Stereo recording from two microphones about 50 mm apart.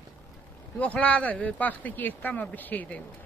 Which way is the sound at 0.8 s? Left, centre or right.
Left.